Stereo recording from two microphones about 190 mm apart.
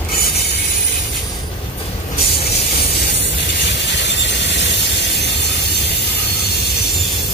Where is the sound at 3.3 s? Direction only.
65° left (ahead or behind).